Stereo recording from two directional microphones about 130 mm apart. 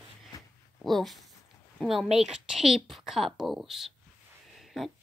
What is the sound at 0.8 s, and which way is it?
A woman's voice, centre (ahead or behind).